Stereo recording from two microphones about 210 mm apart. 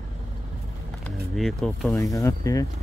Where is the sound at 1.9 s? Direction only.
15° left (ahead or behind).